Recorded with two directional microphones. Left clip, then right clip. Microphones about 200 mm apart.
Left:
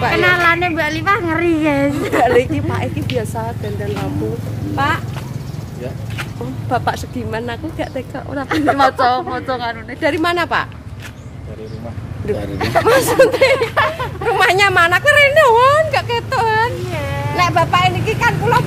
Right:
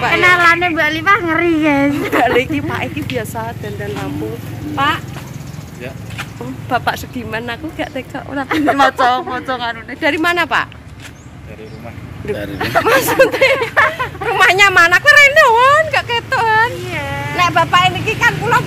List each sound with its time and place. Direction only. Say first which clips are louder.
0.2 s a woman's voice: right 4 dB; 35° right (ahead or behind)
2.1 s speech: left 1 dB; 10° right (ahead or behind)
6.7 s speech: right 1 dB; 10° right (ahead or behind)
8.5 s speech: right 1 dB; 40° right (ahead or behind)
8.7 s speech: right 2 dB; 10° right (ahead or behind)
12.5 s speech: right 1 dB; 40° right (ahead or behind)
12.8 s speech: even; 10° right (ahead or behind)
13.6 s a sound: right 3 dB; 35° right (ahead or behind)
14.3 s speech: right 3 dB; 10° right (ahead or behind)